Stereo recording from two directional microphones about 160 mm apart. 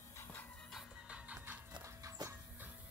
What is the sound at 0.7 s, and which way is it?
Music, centre (ahead or behind).